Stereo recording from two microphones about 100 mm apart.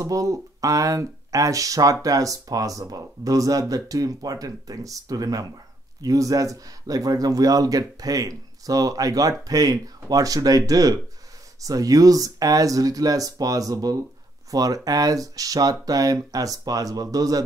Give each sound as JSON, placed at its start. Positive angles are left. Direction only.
{"t": 0.0, "sound": "speech", "side_deg": -35}